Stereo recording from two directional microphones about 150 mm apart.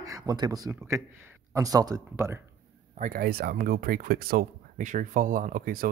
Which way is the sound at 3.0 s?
80° right.